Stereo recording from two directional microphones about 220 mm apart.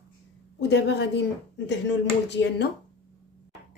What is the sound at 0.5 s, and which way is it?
A woman's voice, 50° left (ahead or behind).